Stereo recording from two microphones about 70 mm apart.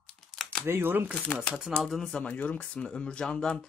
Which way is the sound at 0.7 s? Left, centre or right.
Right.